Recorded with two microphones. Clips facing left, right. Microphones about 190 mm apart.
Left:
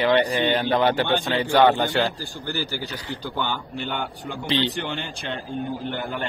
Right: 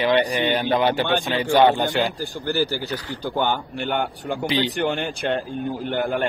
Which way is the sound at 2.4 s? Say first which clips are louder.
Right 6 dB; 50° right (ahead or behind).